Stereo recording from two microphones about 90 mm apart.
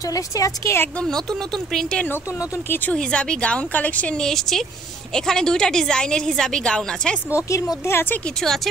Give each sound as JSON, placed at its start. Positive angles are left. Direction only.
{"t": 0.1, "sound": "speech", "side_deg": 40}
{"t": 1.7, "sound": "a woman's voice", "side_deg": 5}
{"t": 4.2, "sound": "a woman's voice", "side_deg": 5}
{"t": 7.2, "sound": "speech", "side_deg": 35}